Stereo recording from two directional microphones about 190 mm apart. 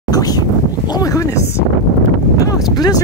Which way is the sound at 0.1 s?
20° left (ahead or behind).